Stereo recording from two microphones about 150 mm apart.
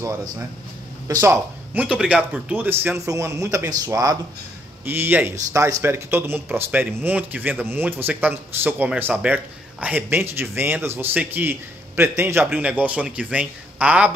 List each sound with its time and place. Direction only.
0.0 s speech: 20° right (ahead or behind)
4.8 s speech: 15° right (ahead or behind)